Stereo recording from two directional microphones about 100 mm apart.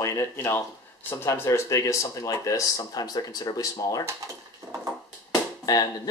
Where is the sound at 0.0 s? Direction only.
30° left (ahead or behind).